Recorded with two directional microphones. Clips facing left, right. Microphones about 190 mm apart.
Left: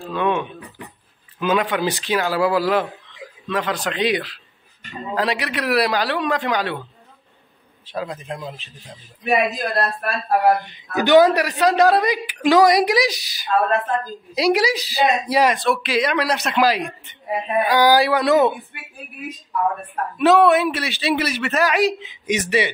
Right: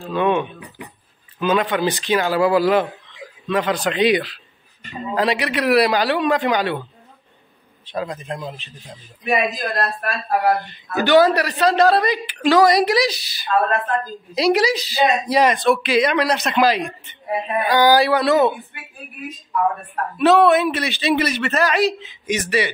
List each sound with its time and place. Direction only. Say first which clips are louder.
0.1 s a man's voice: right 3 dB; centre (ahead or behind)
7.8 s a man's voice: right 2 dB; 5° left (ahead or behind)
11.0 s a man's voice: left 1 dB; 15° left (ahead or behind)
17.5 s a man's voice: left 2 dB; 15° left (ahead or behind)
17.7 s a man's voice: right 2 dB; 5° left (ahead or behind)
20.2 s a man's voice: even; 10° left (ahead or behind)
21.7 s speech: even; 15° left (ahead or behind)